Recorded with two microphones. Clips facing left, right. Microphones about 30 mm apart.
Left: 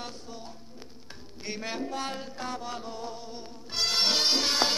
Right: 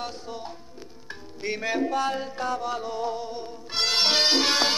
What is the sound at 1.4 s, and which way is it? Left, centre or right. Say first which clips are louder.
Music: right 8 dB; right.